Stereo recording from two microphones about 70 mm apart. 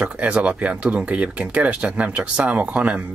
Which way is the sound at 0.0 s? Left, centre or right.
Centre.